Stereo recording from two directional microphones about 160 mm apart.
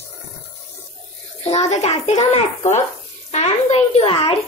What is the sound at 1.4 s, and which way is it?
A child's voice, 45° left (ahead or behind).